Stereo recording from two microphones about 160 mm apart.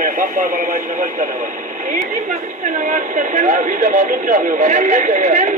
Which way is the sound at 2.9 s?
50° right (ahead or behind).